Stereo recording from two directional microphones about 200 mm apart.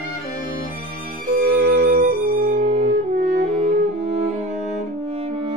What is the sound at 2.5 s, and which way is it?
Music, 30° right (ahead or behind).